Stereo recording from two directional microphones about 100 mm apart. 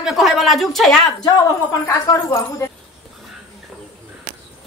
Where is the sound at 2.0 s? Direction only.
35° left (ahead or behind).